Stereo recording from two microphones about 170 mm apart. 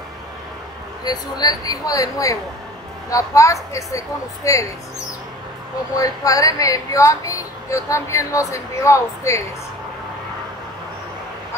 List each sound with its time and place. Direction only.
1.0 s a woman's voice: 25° left (ahead or behind)
5.9 s speech: 20° left (ahead or behind)